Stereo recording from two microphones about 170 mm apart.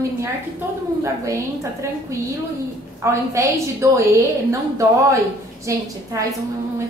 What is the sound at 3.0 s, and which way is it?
A woman's voice, 15° right (ahead or behind).